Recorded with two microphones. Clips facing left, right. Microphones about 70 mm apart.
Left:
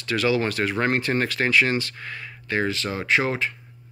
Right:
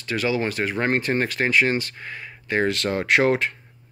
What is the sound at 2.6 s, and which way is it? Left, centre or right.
Speech, right.